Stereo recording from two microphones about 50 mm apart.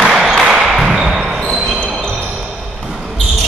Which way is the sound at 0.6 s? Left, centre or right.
Centre.